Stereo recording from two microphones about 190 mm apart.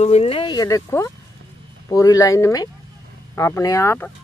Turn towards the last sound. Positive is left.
turn(degrees=15)  # may be behind; listen again after turning